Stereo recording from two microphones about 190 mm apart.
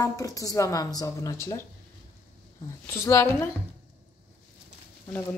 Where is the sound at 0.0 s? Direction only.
15° left (ahead or behind).